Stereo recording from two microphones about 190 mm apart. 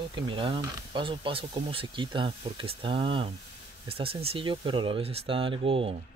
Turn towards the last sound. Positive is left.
turn(degrees=-30)  # may be behind; listen again after turning